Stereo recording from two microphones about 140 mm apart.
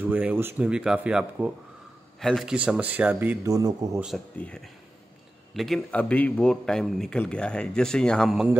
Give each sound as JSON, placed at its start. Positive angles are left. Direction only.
{"t": 0.0, "sound": "speech", "side_deg": -10}
{"t": 2.1, "sound": "a man's voice", "side_deg": 0}
{"t": 2.5, "sound": "speech", "side_deg": -10}
{"t": 3.4, "sound": "a man's voice", "side_deg": -25}
{"t": 5.5, "sound": "a man's voice", "side_deg": 0}